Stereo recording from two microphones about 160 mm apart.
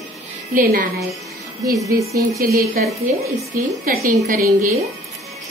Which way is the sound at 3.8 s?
65° right (ahead or behind).